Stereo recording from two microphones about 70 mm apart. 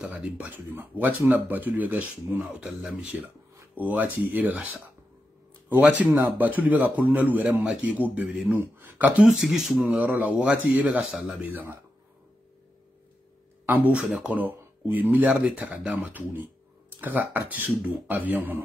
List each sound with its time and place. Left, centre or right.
0.0 s a man's voice: centre
2.4 s speech: centre
3.0 s a man's voice: right
9.2 s speech: centre
10.0 s a man's voice: right
10.9 s speech: centre
11.4 s a man's voice: right
13.7 s a man's voice: right